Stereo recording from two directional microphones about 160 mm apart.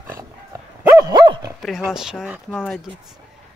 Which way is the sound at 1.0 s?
25° right (ahead or behind).